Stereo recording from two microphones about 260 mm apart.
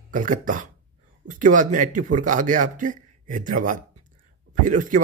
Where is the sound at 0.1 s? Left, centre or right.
Right.